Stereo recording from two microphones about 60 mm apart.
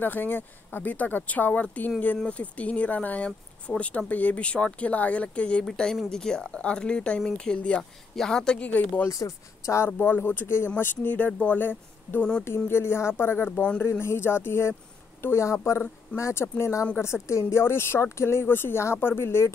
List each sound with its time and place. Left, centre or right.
0.0 s speech: left
6.0 s speech: centre
8.6 s speech: left
9.1 s speech: left
9.9 s speech: left
12.2 s speech: centre
12.4 s speech: left
13.5 s speech: centre
13.8 s speech: left